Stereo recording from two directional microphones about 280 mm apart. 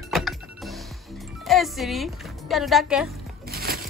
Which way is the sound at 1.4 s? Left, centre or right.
Centre.